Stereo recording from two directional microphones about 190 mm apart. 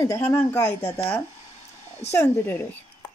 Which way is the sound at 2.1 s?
10° left (ahead or behind).